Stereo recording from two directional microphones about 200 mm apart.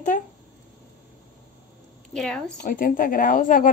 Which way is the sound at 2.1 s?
5° left (ahead or behind).